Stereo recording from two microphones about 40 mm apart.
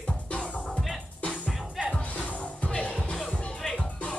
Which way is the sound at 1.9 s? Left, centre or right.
Left.